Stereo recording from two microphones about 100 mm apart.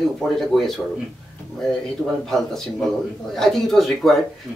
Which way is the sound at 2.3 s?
5° left (ahead or behind).